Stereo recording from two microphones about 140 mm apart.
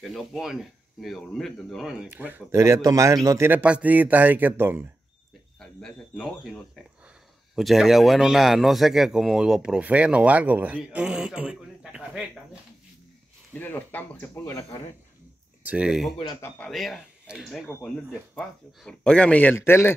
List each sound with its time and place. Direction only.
0.0 s a man's voice: centre (ahead or behind)
2.0 s a man's voice: 15° right (ahead or behind)
5.6 s a man's voice: 5° left (ahead or behind)
13.5 s speech: 15° left (ahead or behind)
15.6 s a man's voice: 10° right (ahead or behind); by 19.9 s 15° left (ahead or behind)